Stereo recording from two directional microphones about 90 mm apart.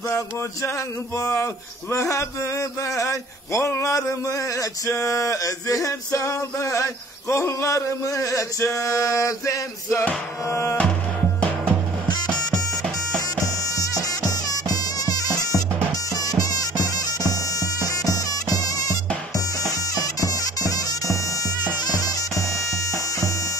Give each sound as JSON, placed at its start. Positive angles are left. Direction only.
{"t": 1.1, "sound": "speech", "side_deg": 35}
{"t": 10.5, "sound": "music", "side_deg": 30}
{"t": 13.7, "sound": "music", "side_deg": 45}
{"t": 16.2, "sound": "bagpipes", "side_deg": 45}